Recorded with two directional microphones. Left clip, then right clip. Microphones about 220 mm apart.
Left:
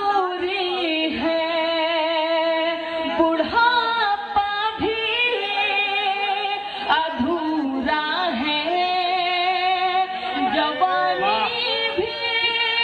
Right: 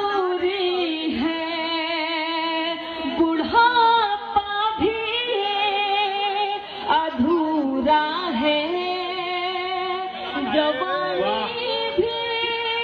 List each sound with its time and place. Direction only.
3.5 s female singing: 25° left (ahead or behind)